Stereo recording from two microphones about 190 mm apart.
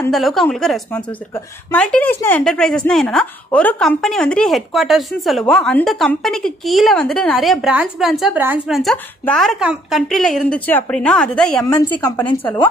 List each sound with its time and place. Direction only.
0.1 s speech: centre (ahead or behind)
11.7 s a woman's voice: 20° left (ahead or behind)